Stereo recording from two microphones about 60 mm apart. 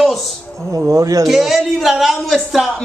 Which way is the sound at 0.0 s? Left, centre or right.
Centre.